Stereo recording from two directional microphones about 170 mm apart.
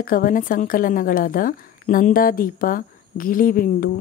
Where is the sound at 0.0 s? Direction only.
55° left (ahead or behind).